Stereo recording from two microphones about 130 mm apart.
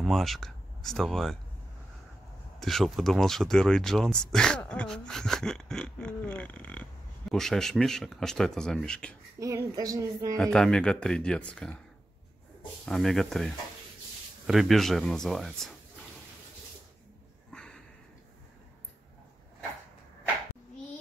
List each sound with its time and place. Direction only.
0.0 s speech: centre (ahead or behind)
2.6 s speech: centre (ahead or behind)
9.4 s speech: 25° right (ahead or behind)
10.3 s speech: 5° left (ahead or behind)
12.8 s speech: centre (ahead or behind)
17.5 s sniff: 5° left (ahead or behind)